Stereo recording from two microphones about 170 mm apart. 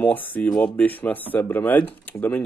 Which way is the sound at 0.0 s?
10° left (ahead or behind).